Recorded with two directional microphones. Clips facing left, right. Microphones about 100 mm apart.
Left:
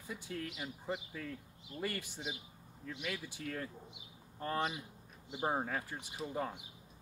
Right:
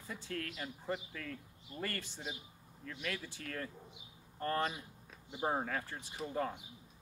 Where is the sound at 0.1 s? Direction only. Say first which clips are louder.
Even; 15° left (ahead or behind).